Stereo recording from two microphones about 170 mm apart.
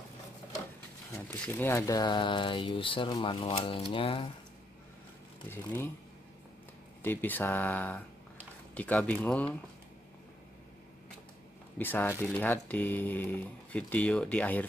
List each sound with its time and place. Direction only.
1.4 s speech: 10° left (ahead or behind); by 4.3 s 30° left (ahead or behind)
5.5 s speech: 15° left (ahead or behind)
7.0 s speech: 10° left (ahead or behind)
11.8 s speech: 10° left (ahead or behind)